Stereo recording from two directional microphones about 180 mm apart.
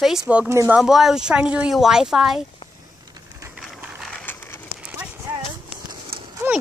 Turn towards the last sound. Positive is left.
turn(degrees=-10)  # may be behind; listen again after turning